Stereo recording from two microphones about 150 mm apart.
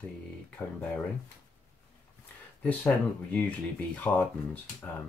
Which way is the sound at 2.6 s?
10° left (ahead or behind).